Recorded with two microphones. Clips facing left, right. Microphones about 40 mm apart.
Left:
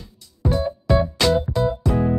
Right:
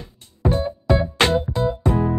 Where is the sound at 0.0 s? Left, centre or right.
Right.